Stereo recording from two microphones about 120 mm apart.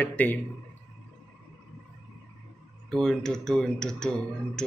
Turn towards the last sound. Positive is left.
turn(degrees=5)  # may be behind; listen again after turning